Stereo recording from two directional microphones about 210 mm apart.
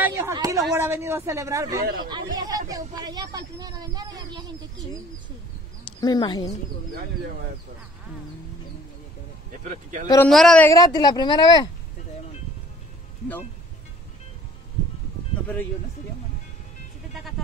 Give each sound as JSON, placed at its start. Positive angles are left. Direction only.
{"t": 0.0, "sound": "speech", "side_deg": -15}
{"t": 5.9, "sound": "a woman's voice", "side_deg": 20}
{"t": 9.7, "sound": "a man's voice", "side_deg": -35}
{"t": 10.0, "sound": "a man's voice", "side_deg": 10}
{"t": 10.7, "sound": "a woman's voice", "side_deg": 20}